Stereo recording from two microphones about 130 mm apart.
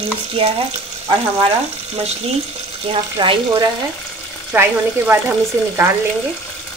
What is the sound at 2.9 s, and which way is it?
Speech, 40° right (ahead or behind).